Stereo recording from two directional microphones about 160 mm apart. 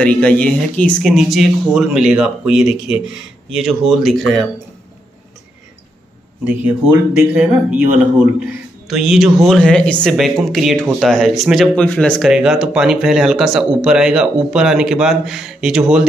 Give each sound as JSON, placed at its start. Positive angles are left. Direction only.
{"t": 0.0, "sound": "speech", "side_deg": 10}
{"t": 6.4, "sound": "a man's voice", "side_deg": -10}